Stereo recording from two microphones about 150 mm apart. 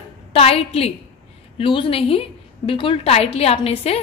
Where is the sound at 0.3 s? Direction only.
40° left (ahead or behind).